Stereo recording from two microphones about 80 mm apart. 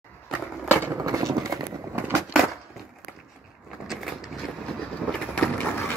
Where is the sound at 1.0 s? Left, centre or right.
Right.